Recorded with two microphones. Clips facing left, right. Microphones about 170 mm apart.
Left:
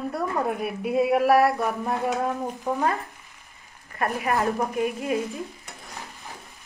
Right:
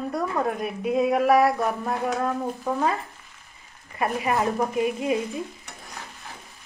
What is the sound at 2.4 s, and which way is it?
Stir, 15° left (ahead or behind).